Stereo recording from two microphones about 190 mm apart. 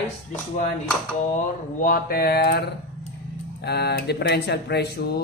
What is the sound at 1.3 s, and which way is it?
Speech, 45° left (ahead or behind).